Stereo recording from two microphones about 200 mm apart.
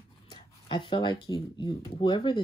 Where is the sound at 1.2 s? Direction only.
20° left (ahead or behind).